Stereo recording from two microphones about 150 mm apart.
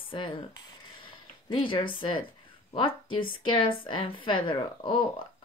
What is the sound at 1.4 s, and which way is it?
Speech, 35° left (ahead or behind).